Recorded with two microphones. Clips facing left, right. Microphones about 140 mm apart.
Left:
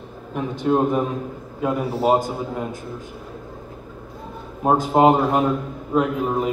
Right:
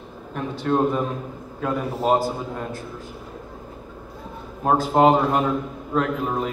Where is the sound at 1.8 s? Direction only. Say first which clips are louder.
Left 2 dB; 5° left (ahead or behind).